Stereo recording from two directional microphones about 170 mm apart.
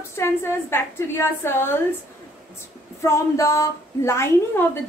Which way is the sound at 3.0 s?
15° left (ahead or behind).